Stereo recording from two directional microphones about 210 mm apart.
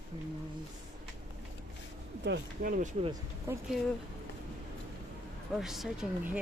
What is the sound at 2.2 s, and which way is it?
Speech, 55° right (ahead or behind).